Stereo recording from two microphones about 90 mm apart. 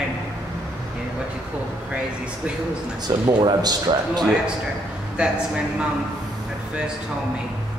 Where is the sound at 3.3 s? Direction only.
50° right (ahead or behind).